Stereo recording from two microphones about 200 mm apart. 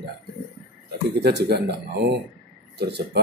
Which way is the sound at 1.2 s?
55° right (ahead or behind).